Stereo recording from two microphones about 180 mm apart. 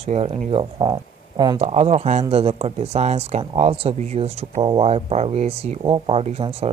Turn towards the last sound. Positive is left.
turn(degrees=-35)  # may be behind; listen again after turning